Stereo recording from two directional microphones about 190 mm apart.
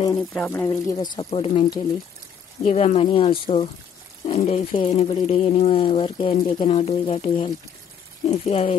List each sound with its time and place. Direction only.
0.3 s speech: 10° left (ahead or behind)
0.9 s speech: 25° left (ahead or behind)